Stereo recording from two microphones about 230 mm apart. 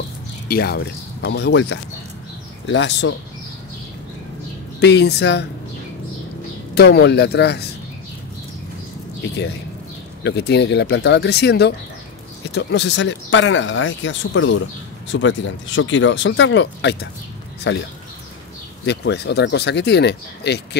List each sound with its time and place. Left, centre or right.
0.5 s speech: left
4.7 s speech: left
6.7 s speech: left
10.2 s speech: left
18.9 s speech: left